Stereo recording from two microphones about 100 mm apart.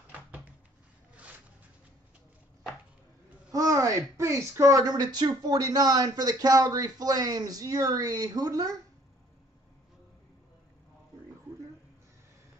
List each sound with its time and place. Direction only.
0.1 s cupboard open or close: 15° right (ahead or behind)
3.5 s speech: 35° right (ahead or behind)